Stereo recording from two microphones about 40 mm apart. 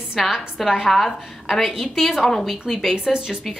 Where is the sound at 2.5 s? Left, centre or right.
Centre.